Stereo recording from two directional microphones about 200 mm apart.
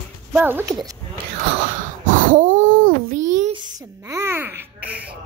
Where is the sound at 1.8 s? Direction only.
40° right (ahead or behind).